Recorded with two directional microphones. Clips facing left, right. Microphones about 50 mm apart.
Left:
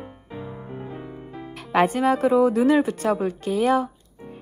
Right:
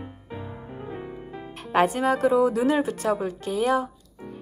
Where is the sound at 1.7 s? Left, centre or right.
Left.